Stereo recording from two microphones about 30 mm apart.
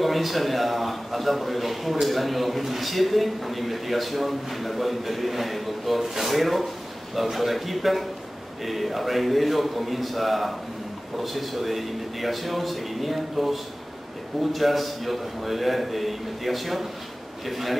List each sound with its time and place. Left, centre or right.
0.0 s a man's voice: centre